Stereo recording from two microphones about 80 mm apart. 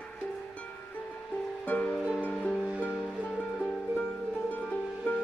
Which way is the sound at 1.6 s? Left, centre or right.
Left.